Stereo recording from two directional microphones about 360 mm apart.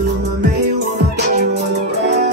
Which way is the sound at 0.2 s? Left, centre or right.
Right.